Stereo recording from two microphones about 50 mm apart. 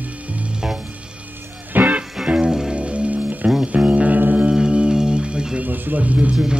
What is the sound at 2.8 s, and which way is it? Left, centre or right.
Music, right.